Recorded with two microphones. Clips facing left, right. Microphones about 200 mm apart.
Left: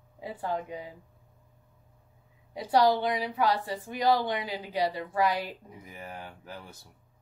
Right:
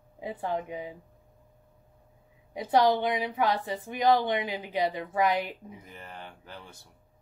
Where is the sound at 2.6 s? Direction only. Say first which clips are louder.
Even; 20° right (ahead or behind).